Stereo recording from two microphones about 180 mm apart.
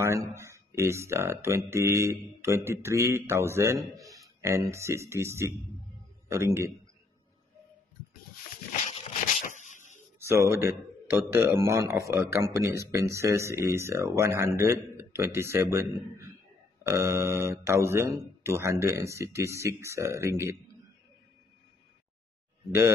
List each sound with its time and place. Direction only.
0.0 s a man's voice: 15° right (ahead or behind)
9.5 s a sound: 45° left (ahead or behind)
10.1 s speech: 15° right (ahead or behind)